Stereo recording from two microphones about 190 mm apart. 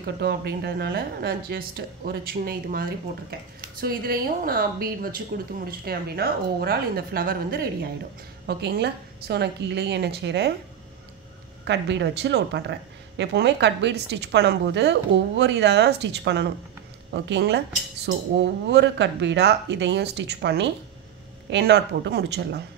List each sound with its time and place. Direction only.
0.0 s a woman's voice: 55° right (ahead or behind)
11.6 s a woman's voice: 65° right (ahead or behind)